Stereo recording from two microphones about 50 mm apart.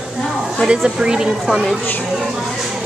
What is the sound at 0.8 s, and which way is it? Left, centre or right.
Speech, centre.